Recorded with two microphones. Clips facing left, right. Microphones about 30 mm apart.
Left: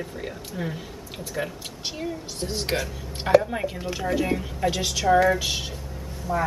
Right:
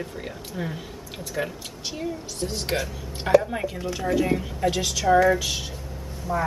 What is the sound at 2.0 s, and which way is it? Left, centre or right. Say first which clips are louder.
Speech: right 2 dB; centre.